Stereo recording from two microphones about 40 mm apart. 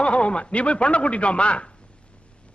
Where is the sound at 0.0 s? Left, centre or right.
Left.